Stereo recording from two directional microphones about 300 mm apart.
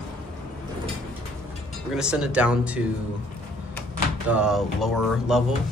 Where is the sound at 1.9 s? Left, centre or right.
Centre.